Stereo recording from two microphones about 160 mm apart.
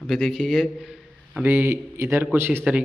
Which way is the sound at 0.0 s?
Centre (ahead or behind).